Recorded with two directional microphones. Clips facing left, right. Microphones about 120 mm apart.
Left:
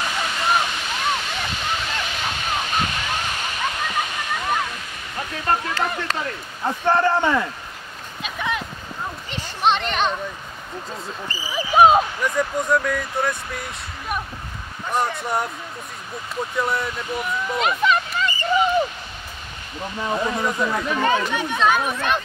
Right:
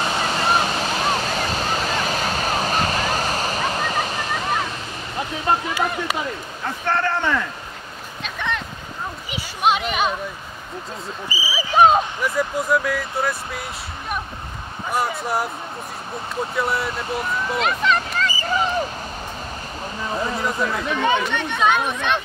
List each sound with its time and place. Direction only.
0.0 s waves: 35° right (ahead or behind)
5.5 s speech: 15° right (ahead or behind)
6.6 s a man's voice: 15° left (ahead or behind)
8.2 s a sound: 5° left (ahead or behind)
9.3 s a sound: 5° right (ahead or behind)
11.2 s speech: 5° right (ahead or behind)
11.7 s speech: 5° left (ahead or behind)
14.9 s speech: 5° right (ahead or behind)
16.5 s speech: 5° right (ahead or behind)
17.6 s a sound: 5° left (ahead or behind)
20.2 s speech: centre (ahead or behind)